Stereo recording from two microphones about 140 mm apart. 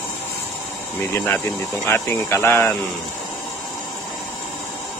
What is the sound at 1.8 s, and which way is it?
Speech, 15° left (ahead or behind).